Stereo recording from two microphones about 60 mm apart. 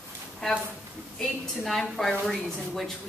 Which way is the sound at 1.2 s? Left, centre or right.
Centre.